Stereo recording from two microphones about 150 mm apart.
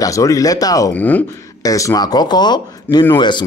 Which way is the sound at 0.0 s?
20° left (ahead or behind).